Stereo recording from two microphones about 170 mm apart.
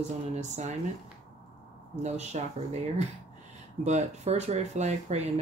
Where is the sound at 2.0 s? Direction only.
40° right (ahead or behind).